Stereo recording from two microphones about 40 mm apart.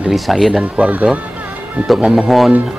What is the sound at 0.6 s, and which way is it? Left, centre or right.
Speech, right.